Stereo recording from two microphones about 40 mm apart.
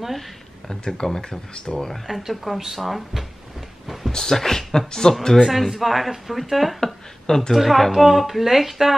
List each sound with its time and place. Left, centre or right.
0.7 s speech: centre
1.5 s speech: left
2.0 s a woman's voice: centre
3.8 s a sound: centre
4.1 s speech: centre
5.5 s a woman's voice: centre
6.8 s a sound: centre
7.5 s a woman's voice: centre